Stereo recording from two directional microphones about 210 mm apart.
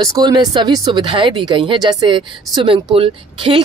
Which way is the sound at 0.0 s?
20° right (ahead or behind).